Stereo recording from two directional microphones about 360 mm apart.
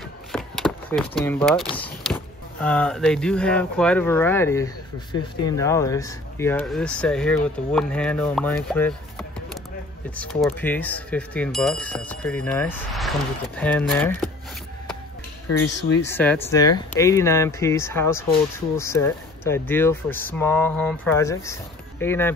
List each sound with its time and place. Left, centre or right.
0.3 s power windows: centre
1.7 s speech: centre
10.1 s speech: centre
15.5 s speech: left
16.1 s speech: centre